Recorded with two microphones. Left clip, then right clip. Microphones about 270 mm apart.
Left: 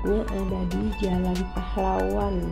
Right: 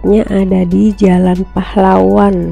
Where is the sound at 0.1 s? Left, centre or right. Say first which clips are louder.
Right 17 dB; right.